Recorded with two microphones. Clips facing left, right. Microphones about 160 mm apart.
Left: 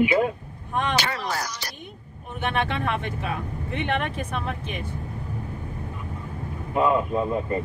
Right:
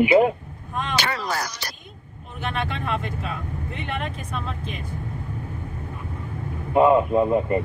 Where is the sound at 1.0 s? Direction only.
75° right (ahead or behind).